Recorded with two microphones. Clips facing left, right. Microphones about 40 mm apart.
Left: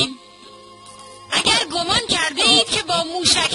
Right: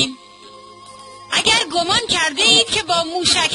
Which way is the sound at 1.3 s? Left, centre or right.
Centre.